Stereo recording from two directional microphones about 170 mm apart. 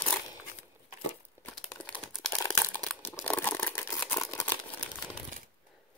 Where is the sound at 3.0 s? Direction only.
10° left (ahead or behind).